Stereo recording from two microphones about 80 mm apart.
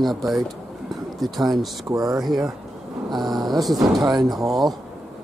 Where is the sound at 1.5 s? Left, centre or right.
Right.